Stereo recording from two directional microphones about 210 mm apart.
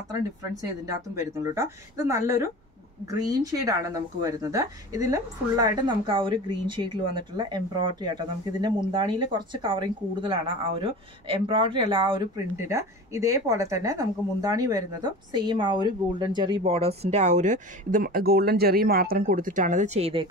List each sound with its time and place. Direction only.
0.1 s speech: 15° right (ahead or behind)